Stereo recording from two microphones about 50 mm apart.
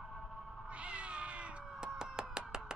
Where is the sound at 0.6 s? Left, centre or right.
Right.